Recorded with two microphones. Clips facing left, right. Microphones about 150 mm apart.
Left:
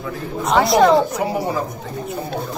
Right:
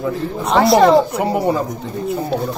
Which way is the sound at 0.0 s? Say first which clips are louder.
Right 4 dB; 30° right (ahead or behind).